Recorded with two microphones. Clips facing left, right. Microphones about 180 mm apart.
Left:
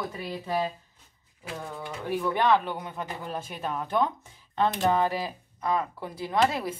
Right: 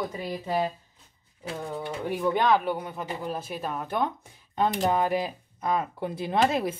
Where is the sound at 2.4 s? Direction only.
10° right (ahead or behind).